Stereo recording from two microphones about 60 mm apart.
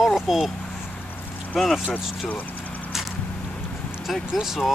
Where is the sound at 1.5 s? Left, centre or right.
Centre.